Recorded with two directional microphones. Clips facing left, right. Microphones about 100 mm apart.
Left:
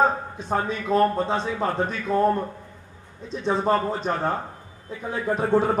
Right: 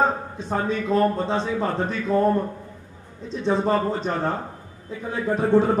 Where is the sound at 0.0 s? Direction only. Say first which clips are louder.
Left 1 dB; 15° left (ahead or behind).